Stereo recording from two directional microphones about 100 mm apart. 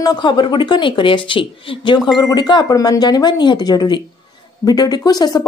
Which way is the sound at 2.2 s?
40° left (ahead or behind).